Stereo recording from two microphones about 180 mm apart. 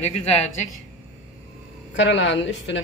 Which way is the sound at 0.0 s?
40° left (ahead or behind).